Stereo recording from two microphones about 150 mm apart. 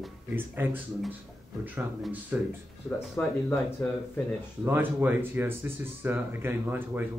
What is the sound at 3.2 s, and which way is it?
Speech, 15° left (ahead or behind).